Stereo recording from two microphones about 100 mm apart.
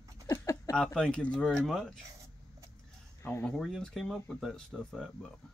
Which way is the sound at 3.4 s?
5° left (ahead or behind).